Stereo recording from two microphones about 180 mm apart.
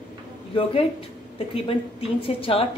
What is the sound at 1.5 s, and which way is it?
A woman's voice, 30° left (ahead or behind).